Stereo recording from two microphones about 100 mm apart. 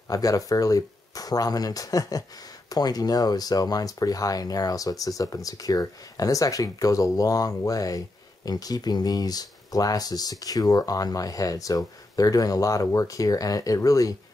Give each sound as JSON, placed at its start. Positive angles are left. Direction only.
{"t": 0.1, "sound": "speech", "side_deg": 35}